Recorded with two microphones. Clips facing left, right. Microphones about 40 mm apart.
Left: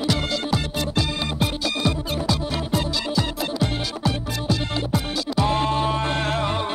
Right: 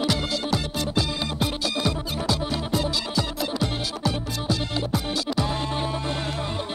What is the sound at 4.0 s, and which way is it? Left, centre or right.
Music, centre.